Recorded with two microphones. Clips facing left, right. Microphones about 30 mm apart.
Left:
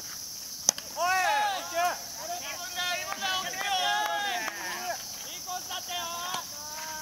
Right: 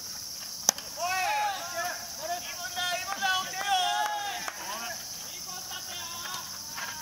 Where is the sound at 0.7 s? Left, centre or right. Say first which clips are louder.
Right 1 dB; centre.